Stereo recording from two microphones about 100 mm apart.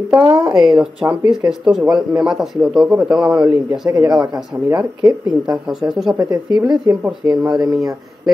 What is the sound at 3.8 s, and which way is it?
Speech, 40° right (ahead or behind).